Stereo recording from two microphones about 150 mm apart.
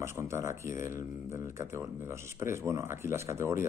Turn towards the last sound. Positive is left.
turn(degrees=-15)  # may be behind; listen again after turning